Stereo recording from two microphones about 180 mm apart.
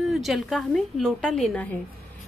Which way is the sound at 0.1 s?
Centre (ahead or behind).